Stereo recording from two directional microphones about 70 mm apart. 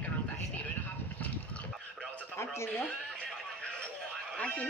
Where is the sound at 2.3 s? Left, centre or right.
Left.